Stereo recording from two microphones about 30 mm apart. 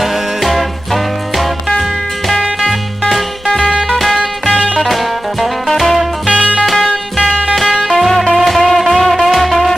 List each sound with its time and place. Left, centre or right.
0.0 s music: centre
3.9 s music: centre
6.2 s music: right
6.6 s music: centre
8.1 s music: centre